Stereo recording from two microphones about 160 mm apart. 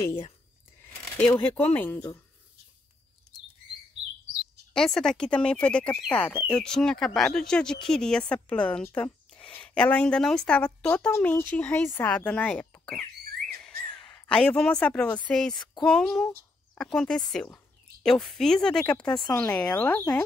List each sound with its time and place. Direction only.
1.1 s speech: 10° left (ahead or behind)
4.7 s speech: 5° left (ahead or behind)
13.6 s a sound: 5° left (ahead or behind)
15.2 s speech: 5° left (ahead or behind)
19.0 s speech: 25° left (ahead or behind)
19.3 s speech: 10° left (ahead or behind)